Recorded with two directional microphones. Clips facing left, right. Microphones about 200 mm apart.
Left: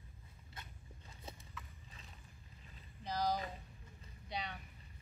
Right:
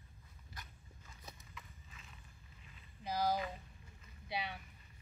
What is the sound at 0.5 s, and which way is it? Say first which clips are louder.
Dog: left 1 dB; 30° left (ahead or behind).